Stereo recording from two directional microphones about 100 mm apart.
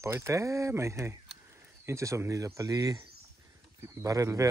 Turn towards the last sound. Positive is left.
turn(degrees=-30)  # may be behind; listen again after turning